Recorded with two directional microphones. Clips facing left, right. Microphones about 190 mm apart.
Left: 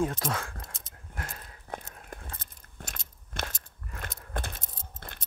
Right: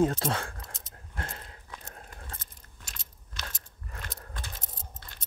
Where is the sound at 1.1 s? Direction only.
30° right (ahead or behind).